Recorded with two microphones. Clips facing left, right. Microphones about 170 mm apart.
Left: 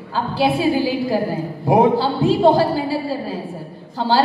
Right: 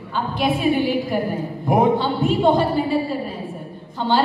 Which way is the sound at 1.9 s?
35° left (ahead or behind).